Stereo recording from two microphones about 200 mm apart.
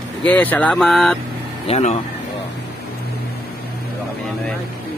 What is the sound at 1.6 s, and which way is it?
Speech, 30° left (ahead or behind).